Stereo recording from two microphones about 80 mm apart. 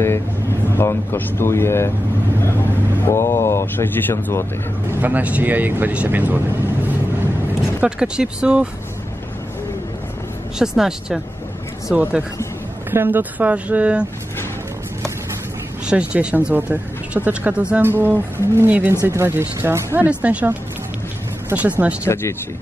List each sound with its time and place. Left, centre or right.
0.7 s speech: left
3.1 s speech: left
5.0 s speech: centre
7.8 s speech: centre
10.6 s speech: centre
15.9 s speech: centre; by 20.1 s right
20.1 s speech: centre
21.5 s speech: centre
22.0 s speech: left